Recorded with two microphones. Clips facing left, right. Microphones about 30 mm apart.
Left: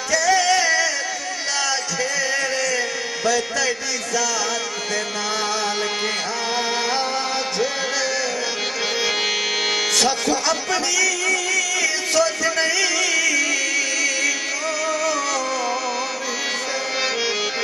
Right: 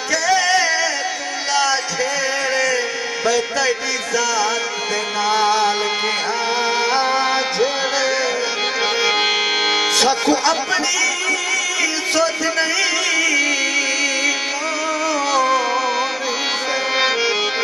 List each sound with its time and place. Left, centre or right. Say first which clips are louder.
0.1 s music: right 1 dB; centre
2.5 s a sound: right 4 dB; centre
3.3 s a man's voice: right 3 dB; centre
5.3 s music: right 8 dB; centre
6.9 s music: right 5 dB; right